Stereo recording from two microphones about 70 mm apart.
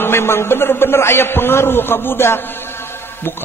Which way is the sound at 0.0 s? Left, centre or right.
Left.